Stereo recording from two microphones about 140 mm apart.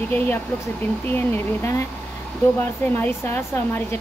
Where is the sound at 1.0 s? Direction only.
15° left (ahead or behind).